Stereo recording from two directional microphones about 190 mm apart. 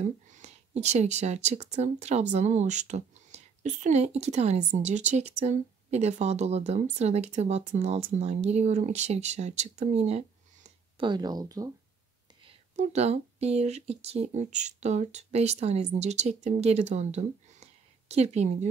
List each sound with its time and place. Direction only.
0.0 s speech: 40° right (ahead or behind); by 11.7 s 20° right (ahead or behind)
12.7 s speech: 35° right (ahead or behind)